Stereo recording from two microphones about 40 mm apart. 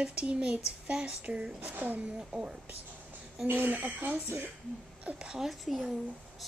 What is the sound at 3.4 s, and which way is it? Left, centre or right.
Speech, right.